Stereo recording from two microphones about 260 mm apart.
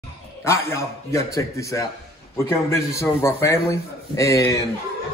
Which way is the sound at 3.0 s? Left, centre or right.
Centre.